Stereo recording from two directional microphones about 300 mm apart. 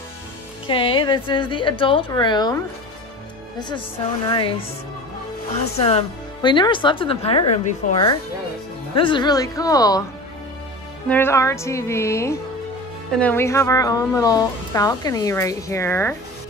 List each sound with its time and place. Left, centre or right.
0.7 s speech: centre
5.8 s speech: centre
11.1 s speech: centre